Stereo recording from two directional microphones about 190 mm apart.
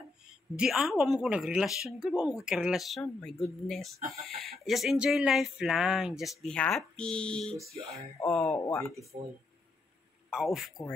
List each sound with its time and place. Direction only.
0.3 s speech: 5° right (ahead or behind)
9.1 s speech: 20° right (ahead or behind)
10.3 s speech: centre (ahead or behind)